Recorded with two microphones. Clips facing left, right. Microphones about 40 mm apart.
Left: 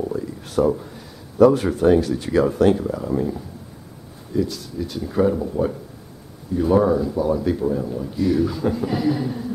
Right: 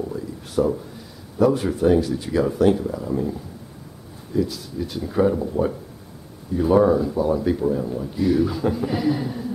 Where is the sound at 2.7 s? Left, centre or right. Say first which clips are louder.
Left 2 dB; left.